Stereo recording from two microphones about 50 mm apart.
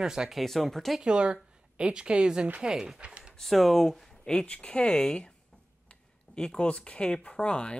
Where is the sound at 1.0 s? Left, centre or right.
Right.